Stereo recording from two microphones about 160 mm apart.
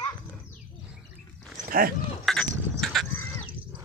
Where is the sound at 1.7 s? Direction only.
65° right (ahead or behind).